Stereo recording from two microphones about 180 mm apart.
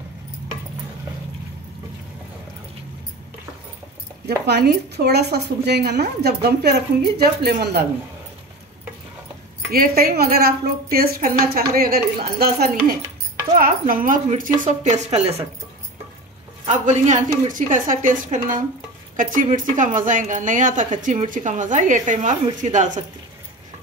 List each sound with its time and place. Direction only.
4.5 s a woman's voice: 65° right (ahead or behind)
9.7 s a woman's voice: 55° right (ahead or behind)
13.6 s a woman's voice: 50° right (ahead or behind)
16.6 s a woman's voice: 40° right (ahead or behind)